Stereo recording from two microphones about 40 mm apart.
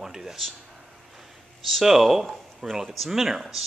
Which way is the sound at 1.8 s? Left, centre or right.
Centre.